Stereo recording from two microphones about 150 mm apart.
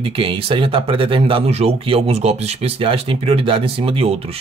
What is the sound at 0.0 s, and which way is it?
Speech, 40° right (ahead or behind).